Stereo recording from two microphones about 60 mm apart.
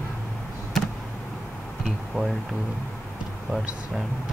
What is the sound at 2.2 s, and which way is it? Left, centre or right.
Speech, centre.